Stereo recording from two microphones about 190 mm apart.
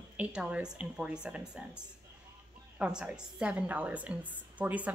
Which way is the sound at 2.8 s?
5° right (ahead or behind).